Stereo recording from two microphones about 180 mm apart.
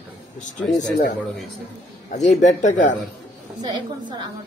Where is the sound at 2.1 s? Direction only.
40° left (ahead or behind).